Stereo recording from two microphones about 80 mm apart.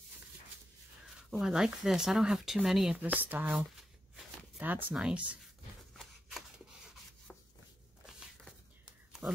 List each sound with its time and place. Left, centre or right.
1.4 s speech: centre
3.0 s speech: centre
4.6 s speech: right
9.2 s speech: centre